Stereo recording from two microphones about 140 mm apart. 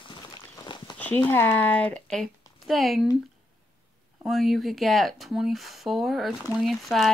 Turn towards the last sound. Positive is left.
turn(degrees=0)  # may be behind; listen again after turning